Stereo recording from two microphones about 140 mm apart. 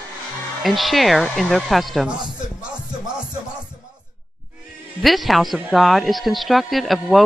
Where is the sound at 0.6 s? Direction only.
Centre (ahead or behind).